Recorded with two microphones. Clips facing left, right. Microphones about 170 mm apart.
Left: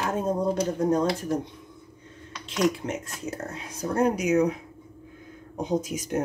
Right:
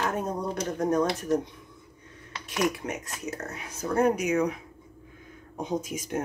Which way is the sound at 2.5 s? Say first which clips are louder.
Left 3 dB; 25° left (ahead or behind).